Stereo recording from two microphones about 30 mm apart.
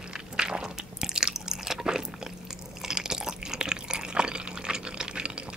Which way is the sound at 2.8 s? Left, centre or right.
Centre.